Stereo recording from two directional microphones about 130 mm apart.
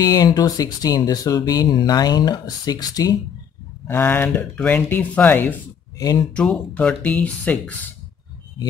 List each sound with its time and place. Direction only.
0.0 s speech: 30° left (ahead or behind)
3.8 s speech: 15° left (ahead or behind)